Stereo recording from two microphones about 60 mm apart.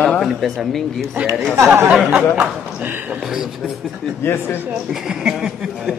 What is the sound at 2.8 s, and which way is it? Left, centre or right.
Speech, right.